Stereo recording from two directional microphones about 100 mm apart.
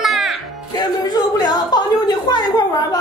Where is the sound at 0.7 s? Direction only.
45° left (ahead or behind).